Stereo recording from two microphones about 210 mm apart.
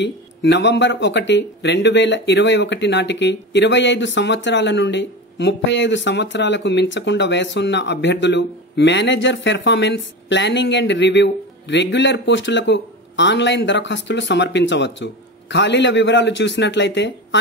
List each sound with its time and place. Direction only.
0.0 s speech: 60° left (ahead or behind)